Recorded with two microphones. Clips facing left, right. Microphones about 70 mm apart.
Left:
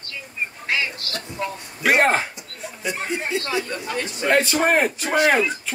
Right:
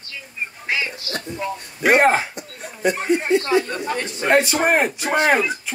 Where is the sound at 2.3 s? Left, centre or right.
Right.